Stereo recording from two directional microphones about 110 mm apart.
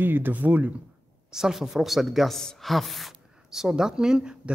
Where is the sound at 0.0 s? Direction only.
20° right (ahead or behind).